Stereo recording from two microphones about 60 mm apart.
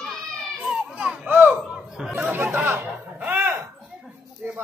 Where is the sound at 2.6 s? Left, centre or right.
Right.